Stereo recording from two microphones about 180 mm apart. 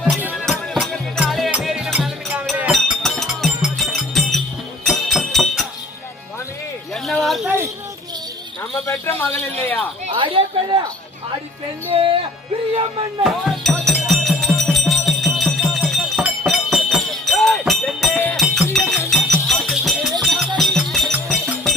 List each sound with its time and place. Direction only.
0.2 s music: 5° right (ahead or behind)
7.1 s a sound: centre (ahead or behind)
7.4 s a sound: 15° right (ahead or behind)
8.8 s speech: 10° left (ahead or behind)
10.0 s a woman's voice: 30° right (ahead or behind)
13.2 s music: centre (ahead or behind)